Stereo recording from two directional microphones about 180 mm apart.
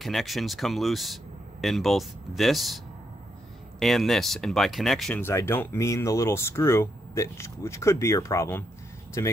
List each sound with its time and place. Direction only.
0.0 s speech: centre (ahead or behind)
3.8 s speech: centre (ahead or behind); by 9.3 s 15° left (ahead or behind)